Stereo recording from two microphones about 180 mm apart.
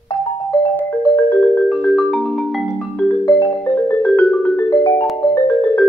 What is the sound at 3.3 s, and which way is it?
Music, 15° left (ahead or behind).